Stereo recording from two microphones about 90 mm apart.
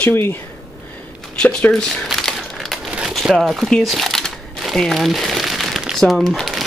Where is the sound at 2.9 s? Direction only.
10° right (ahead or behind).